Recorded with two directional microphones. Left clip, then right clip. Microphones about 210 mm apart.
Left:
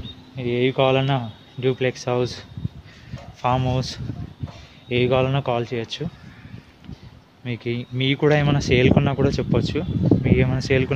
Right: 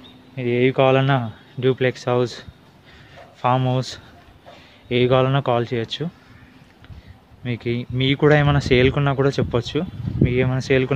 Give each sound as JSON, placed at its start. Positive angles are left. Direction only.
{"t": 0.4, "sound": "speech", "side_deg": -20}
{"t": 3.4, "sound": "speech", "side_deg": -15}
{"t": 7.4, "sound": "speech", "side_deg": -15}